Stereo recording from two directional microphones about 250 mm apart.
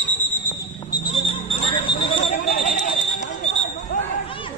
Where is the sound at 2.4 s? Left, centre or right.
Left.